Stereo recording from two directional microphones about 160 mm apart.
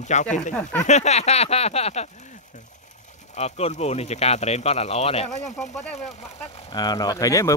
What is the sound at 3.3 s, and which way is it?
Speech, 45° left (ahead or behind).